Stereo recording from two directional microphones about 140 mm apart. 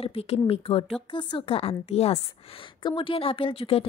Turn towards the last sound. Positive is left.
turn(degrees=40)  # may be behind; listen again after turning